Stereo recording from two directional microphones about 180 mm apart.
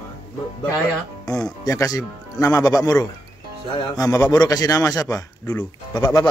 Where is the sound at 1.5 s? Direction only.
20° left (ahead or behind).